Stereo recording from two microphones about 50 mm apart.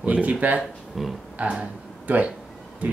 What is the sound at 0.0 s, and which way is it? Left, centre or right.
Speech, right.